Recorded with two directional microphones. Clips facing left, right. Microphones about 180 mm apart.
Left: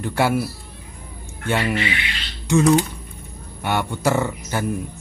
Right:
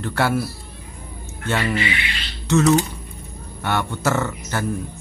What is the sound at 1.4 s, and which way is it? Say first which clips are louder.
Speech: left 1 dB; 15° left (ahead or behind).